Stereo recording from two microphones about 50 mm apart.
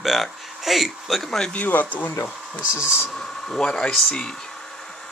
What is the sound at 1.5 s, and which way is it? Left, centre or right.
Speech, left.